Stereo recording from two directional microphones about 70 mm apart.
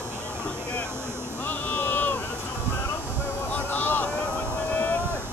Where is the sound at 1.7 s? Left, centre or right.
Left.